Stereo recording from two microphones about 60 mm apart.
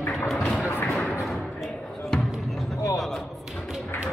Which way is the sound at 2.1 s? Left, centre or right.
Centre.